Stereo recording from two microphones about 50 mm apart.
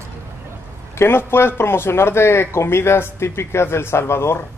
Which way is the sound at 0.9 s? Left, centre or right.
Left.